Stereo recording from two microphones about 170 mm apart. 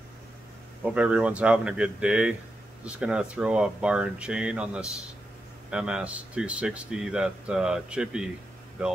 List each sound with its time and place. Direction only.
0.8 s speech: 5° right (ahead or behind)